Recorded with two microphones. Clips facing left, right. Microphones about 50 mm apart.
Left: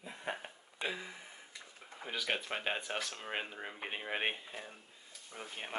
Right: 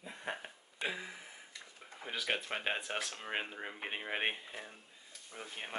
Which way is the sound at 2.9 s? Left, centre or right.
Right.